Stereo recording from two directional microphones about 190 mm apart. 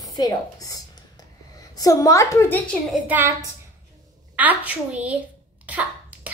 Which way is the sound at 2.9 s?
10° right (ahead or behind).